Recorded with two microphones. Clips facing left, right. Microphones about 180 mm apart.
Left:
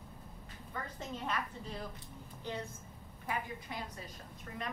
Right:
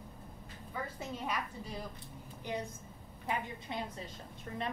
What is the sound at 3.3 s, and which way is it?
Speech, 25° right (ahead or behind).